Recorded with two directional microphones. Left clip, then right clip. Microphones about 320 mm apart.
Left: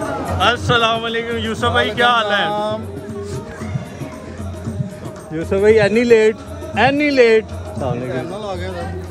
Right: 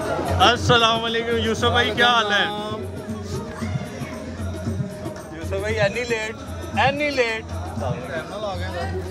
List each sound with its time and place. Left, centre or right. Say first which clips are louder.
0.4 s a man's voice: left 1 dB; centre
5.4 s speech: left 10 dB; centre
8.1 s music: left 4 dB; left